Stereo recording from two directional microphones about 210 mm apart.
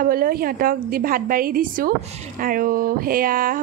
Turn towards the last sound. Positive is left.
turn(degrees=-40)  # may be behind; listen again after turning